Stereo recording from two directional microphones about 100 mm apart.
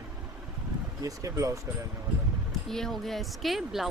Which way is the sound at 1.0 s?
35° right (ahead or behind).